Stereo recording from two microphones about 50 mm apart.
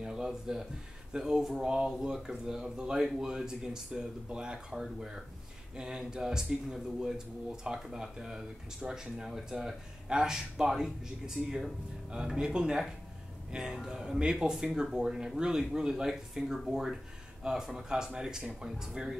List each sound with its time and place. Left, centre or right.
0.0 s speech: centre